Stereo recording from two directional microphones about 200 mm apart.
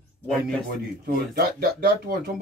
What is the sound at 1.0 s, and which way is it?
Speech, 50° right (ahead or behind).